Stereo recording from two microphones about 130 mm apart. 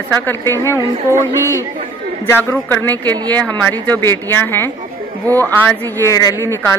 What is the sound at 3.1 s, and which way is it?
A woman's voice, 10° left (ahead or behind).